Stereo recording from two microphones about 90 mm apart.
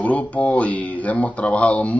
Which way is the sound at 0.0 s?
15° left (ahead or behind).